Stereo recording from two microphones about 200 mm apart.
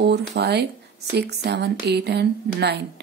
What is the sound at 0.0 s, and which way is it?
Speech, 55° right (ahead or behind).